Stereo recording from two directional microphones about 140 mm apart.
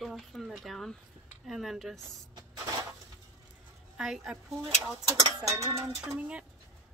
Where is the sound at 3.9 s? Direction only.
5° right (ahead or behind).